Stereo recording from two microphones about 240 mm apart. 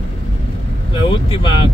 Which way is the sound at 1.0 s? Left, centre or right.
Left.